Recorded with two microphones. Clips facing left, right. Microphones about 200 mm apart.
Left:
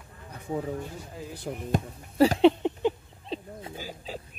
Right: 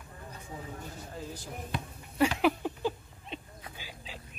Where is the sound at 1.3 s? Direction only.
60° left (ahead or behind).